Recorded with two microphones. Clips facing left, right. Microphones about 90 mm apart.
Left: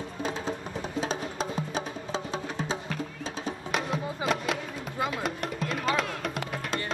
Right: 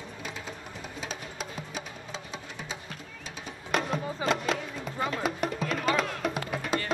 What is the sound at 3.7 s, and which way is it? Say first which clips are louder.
Music: right 3 dB; centre (ahead or behind).